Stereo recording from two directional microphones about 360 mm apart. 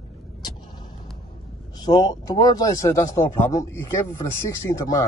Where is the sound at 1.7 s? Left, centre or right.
Centre.